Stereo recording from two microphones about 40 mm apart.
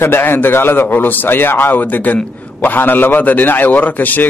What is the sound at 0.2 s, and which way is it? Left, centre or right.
Speech, left.